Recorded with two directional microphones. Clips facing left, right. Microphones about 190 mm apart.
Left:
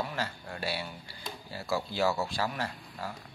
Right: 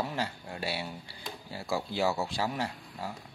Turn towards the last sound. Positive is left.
turn(degrees=-20)  # may be behind; listen again after turning